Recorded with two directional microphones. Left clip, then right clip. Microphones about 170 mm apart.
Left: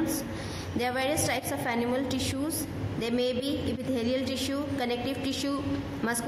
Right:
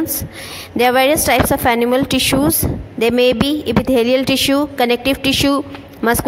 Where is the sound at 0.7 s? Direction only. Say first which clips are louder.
Right 16 dB; 55° right (ahead or behind).